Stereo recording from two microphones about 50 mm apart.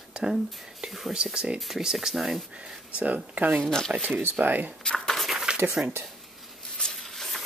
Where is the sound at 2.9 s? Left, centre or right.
Right.